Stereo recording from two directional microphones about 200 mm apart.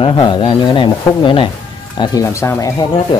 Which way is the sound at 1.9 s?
15° left (ahead or behind).